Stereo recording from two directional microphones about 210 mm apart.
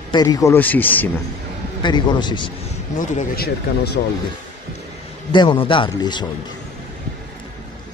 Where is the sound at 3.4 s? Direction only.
50° left (ahead or behind).